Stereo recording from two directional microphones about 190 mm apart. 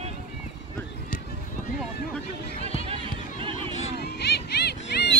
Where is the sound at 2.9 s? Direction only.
30° right (ahead or behind).